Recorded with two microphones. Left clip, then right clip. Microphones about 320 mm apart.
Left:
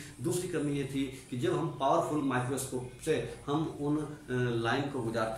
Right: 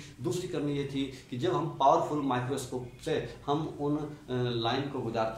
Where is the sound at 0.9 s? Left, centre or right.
Centre.